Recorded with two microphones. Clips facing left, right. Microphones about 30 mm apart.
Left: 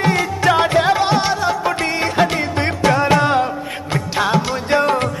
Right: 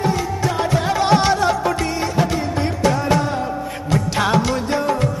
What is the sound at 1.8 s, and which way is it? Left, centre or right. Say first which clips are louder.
Music: left 3 dB; left.